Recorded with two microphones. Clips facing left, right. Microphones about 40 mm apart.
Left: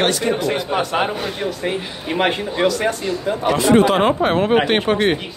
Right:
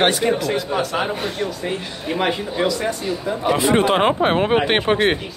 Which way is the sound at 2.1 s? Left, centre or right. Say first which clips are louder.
Left 2 dB; left.